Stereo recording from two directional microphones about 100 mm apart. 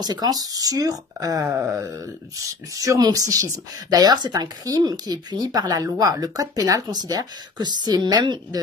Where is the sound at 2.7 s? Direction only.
35° right (ahead or behind).